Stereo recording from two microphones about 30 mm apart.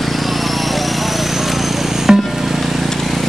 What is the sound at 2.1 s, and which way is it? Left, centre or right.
Music, right.